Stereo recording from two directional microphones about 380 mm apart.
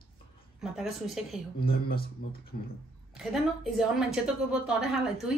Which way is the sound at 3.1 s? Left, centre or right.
Centre.